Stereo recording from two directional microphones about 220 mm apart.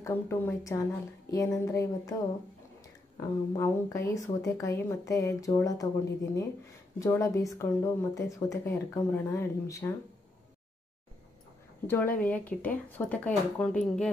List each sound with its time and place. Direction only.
0.0 s speech: 10° left (ahead or behind)
7.0 s speech: 15° left (ahead or behind)
11.9 s speech: 10° left (ahead or behind)